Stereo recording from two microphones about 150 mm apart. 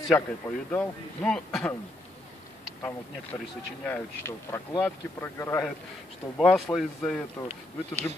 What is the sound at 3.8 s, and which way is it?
Speech, 15° left (ahead or behind).